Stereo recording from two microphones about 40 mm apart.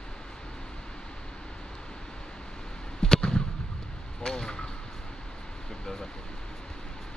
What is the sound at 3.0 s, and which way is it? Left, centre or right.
Fireworks, centre.